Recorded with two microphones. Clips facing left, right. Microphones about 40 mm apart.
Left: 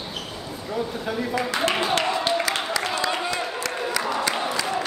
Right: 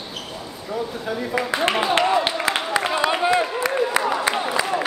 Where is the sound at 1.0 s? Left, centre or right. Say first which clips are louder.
Right 1 dB; centre.